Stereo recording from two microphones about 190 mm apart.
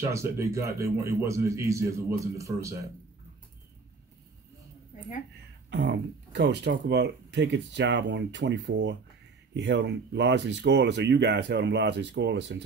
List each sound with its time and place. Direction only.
0.0 s a man's voice: 15° right (ahead or behind)
5.7 s speech: 65° right (ahead or behind)